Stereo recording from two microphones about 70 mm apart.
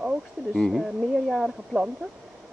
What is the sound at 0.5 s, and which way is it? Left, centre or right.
Speech, centre.